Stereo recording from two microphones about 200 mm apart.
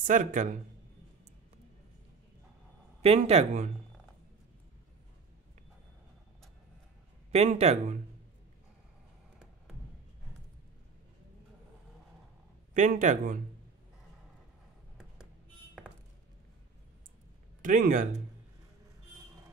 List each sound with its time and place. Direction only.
0.0 s speech: 40° right (ahead or behind)
3.0 s speech: 30° right (ahead or behind)
7.2 s speech: 35° right (ahead or behind)
12.7 s speech: 40° right (ahead or behind)
17.6 s speech: 40° right (ahead or behind)